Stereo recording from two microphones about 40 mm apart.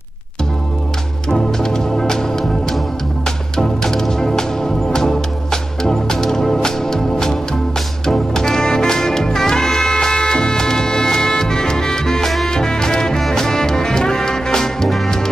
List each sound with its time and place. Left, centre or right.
1.3 s organ: centre
3.3 s music: centre